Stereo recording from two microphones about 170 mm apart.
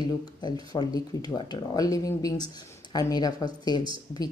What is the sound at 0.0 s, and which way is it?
Speech, 25° left (ahead or behind).